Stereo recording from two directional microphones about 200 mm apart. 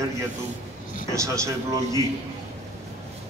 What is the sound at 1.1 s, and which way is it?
Speech, 15° right (ahead or behind).